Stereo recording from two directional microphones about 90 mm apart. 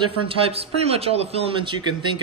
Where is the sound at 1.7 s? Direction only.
65° right (ahead or behind).